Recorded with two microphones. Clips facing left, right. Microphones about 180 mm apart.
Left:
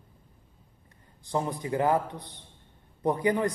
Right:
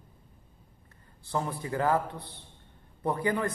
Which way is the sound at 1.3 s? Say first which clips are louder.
Left 3 dB; 15° left (ahead or behind).